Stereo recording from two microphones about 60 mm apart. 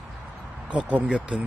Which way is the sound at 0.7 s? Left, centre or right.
Centre.